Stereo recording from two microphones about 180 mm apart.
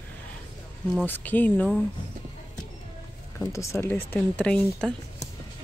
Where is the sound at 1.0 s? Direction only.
10° left (ahead or behind).